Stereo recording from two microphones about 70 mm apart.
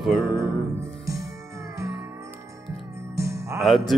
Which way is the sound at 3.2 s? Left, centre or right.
Right.